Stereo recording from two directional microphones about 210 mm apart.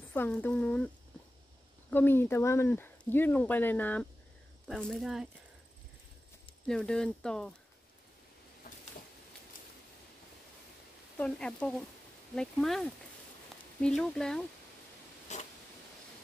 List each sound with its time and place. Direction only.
0.1 s speech: 10° left (ahead or behind)
1.9 s speech: 10° left (ahead or behind)
6.7 s speech: 5° left (ahead or behind)
8.6 s a sound: 45° left (ahead or behind)
11.1 s speech: 5° left (ahead or behind)
15.3 s a sound: 35° left (ahead or behind)